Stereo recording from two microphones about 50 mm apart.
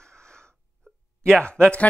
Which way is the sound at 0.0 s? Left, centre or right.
Centre.